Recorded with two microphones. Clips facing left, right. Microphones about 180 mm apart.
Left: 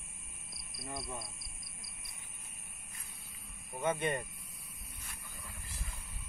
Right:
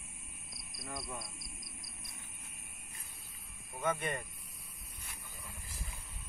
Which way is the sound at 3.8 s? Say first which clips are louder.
Left 2 dB; 30° left (ahead or behind).